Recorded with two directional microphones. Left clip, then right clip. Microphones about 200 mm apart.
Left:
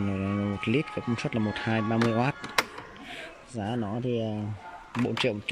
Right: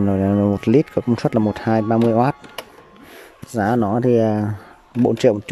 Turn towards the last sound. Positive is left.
turn(degrees=-35)  # may be behind; listen again after turning